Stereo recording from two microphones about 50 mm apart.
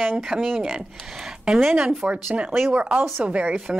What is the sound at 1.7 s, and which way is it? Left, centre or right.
Speech, right.